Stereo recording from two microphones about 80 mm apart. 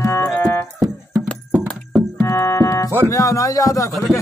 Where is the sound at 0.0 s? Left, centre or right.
Left.